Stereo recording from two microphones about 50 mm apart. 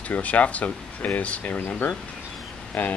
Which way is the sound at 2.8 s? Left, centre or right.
Left.